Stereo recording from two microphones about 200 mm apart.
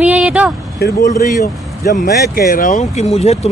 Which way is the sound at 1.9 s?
45° left (ahead or behind).